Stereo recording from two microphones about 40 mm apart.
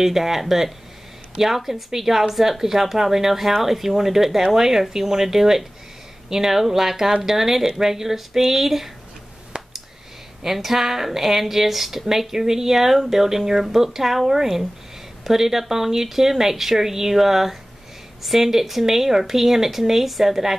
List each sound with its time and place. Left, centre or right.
0.0 s speech: centre
9.5 s a sound: right
10.4 s speech: centre